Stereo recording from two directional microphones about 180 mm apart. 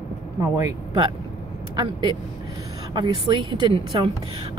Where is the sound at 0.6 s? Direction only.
20° right (ahead or behind).